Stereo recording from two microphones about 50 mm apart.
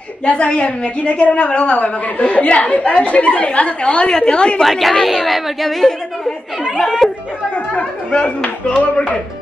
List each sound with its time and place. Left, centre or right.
0.2 s a woman's voice: left
4.6 s speech: centre
7.5 s a woman's voice: left